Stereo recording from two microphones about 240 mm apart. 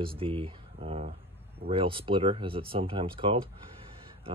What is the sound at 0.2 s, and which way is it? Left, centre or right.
Speech, right.